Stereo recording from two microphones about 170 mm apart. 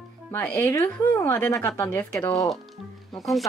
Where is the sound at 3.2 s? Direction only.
Centre (ahead or behind).